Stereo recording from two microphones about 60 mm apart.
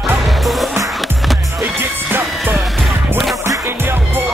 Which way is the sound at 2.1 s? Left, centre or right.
Right.